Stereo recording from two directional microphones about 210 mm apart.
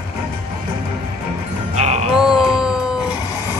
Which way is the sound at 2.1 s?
5° right (ahead or behind).